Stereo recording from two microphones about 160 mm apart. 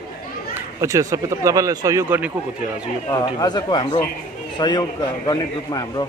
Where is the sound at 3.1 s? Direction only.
25° left (ahead or behind).